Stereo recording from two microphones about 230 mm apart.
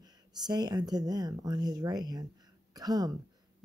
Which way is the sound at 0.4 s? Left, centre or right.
Centre.